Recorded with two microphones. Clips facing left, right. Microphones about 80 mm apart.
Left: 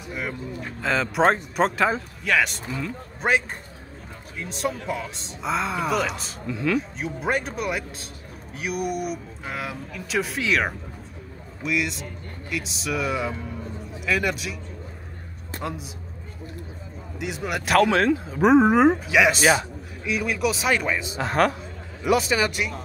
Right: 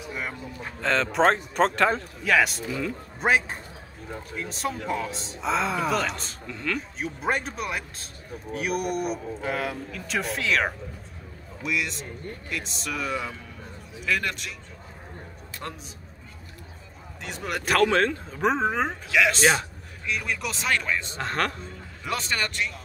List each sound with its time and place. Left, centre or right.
0.1 s speech: centre
15.6 s speech: centre
17.2 s speech: centre